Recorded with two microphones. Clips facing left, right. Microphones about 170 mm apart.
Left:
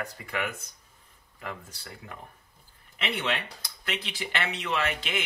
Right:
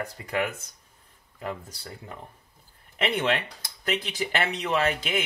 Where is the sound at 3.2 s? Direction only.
50° right (ahead or behind).